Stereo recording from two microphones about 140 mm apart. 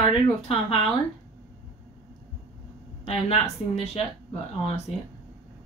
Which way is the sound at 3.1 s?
45° left (ahead or behind).